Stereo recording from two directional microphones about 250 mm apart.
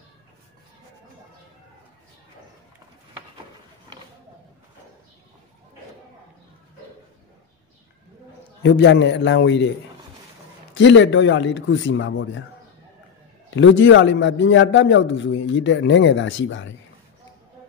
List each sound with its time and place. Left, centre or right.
8.6 s a man's voice: left
10.7 s a man's voice: left
13.6 s a man's voice: left